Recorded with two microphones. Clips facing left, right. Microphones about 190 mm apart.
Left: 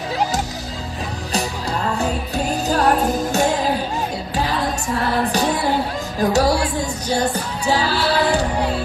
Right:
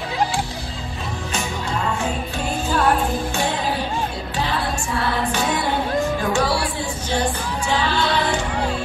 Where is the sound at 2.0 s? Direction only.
40° left (ahead or behind).